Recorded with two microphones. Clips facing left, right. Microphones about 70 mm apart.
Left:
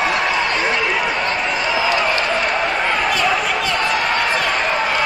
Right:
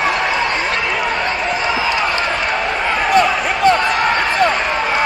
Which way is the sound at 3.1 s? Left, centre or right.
Right.